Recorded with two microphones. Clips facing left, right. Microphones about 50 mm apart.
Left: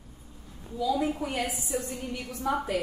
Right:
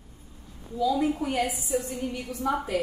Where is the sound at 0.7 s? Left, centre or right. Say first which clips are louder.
Right 3 dB; centre.